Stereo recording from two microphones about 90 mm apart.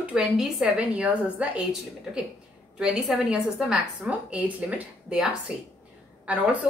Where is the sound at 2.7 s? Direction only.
5° right (ahead or behind).